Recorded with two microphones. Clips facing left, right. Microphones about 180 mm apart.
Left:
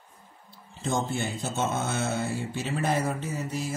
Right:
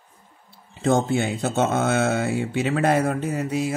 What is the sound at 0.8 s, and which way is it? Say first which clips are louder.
Speech: right 8 dB; 70° right (ahead or behind).